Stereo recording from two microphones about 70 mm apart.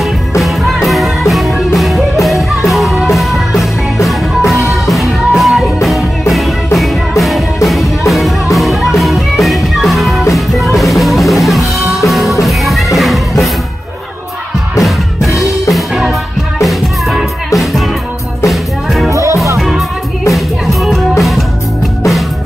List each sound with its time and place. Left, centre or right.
0.4 s music: centre
14.8 s music: centre
19.0 s music: right
20.3 s music: centre